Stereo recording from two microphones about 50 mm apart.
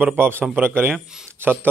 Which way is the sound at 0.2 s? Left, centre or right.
Right.